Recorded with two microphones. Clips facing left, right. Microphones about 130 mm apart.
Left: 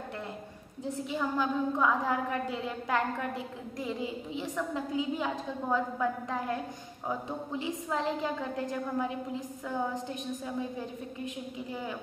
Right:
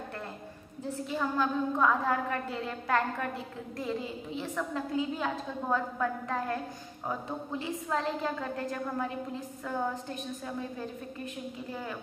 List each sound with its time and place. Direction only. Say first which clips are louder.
1.1 s a woman's voice: right 1 dB; 15° left (ahead or behind)